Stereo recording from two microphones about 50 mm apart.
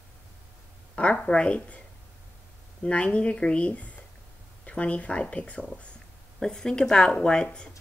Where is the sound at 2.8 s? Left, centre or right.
Left.